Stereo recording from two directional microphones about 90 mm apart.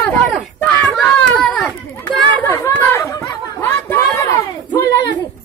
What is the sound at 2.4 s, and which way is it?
Chatter, 35° left (ahead or behind).